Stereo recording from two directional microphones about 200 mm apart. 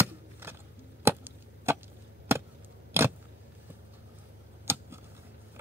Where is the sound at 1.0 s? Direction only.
10° right (ahead or behind).